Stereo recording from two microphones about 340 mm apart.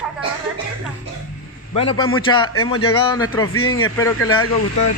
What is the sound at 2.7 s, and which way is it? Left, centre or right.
Speech, left.